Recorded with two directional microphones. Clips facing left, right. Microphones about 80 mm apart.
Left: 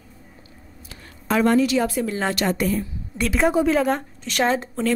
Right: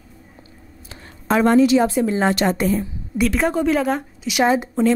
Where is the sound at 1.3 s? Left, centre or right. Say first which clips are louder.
Right 4 dB; right.